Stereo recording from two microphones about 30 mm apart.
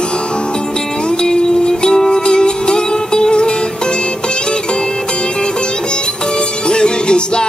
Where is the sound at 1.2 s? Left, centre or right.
Left.